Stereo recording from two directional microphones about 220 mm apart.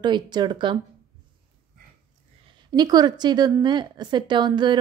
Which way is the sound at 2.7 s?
20° right (ahead or behind).